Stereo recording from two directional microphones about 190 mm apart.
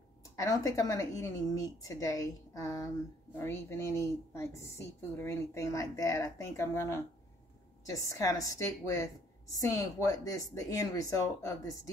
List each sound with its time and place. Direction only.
0.2 s a woman's voice: 15° left (ahead or behind)